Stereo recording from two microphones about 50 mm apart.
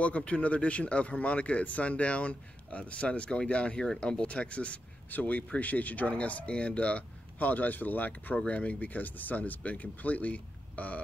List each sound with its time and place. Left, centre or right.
0.0 s speech: left